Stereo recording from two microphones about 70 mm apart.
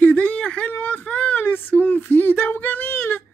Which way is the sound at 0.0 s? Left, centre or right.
Centre.